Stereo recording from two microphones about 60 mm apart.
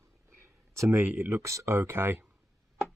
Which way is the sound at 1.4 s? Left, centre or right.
Right.